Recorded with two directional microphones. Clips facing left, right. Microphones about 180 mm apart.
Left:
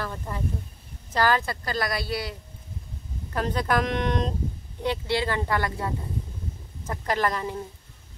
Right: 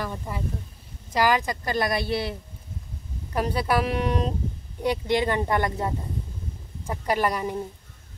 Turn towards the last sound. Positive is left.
turn(degrees=-15)  # may be behind; listen again after turning